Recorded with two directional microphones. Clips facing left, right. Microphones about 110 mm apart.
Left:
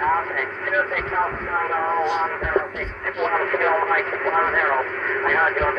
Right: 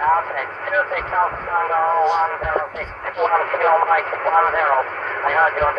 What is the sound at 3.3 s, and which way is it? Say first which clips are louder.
Speech: right 4 dB; 40° right (ahead or behind).